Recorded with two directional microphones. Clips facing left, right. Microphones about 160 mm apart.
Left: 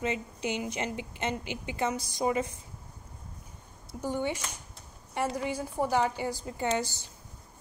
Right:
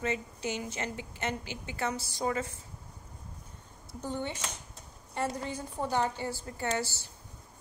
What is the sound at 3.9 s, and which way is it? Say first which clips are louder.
Speech: left 4 dB; 10° left (ahead or behind).